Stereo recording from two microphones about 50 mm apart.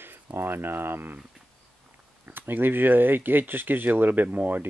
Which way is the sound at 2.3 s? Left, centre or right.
Right.